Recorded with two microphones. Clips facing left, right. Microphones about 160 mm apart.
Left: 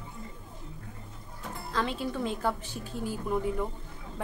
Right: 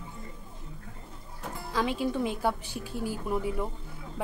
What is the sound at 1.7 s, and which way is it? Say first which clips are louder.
A woman's voice: right 3 dB; 10° right (ahead or behind).